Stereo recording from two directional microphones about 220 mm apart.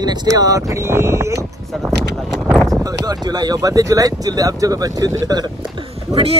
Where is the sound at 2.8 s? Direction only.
20° right (ahead or behind).